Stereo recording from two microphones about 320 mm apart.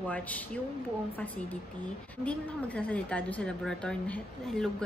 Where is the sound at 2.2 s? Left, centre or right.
Centre.